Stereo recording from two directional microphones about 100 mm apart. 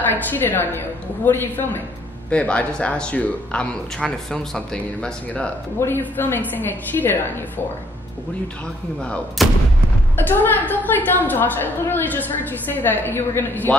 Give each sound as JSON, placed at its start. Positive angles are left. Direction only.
{"t": 0.1, "sound": "a woman's voice", "side_deg": 20}
{"t": 5.8, "sound": "a woman's voice", "side_deg": 20}
{"t": 9.4, "sound": "artillery fire", "side_deg": 0}
{"t": 10.1, "sound": "a woman's voice", "side_deg": 20}